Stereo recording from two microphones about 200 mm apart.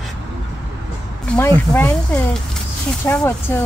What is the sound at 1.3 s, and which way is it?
Speech, 5° left (ahead or behind).